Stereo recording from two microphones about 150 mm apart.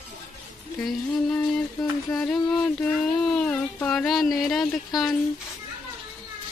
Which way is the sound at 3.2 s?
5° left (ahead or behind).